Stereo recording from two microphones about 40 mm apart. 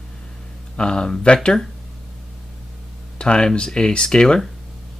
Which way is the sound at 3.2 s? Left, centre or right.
Left.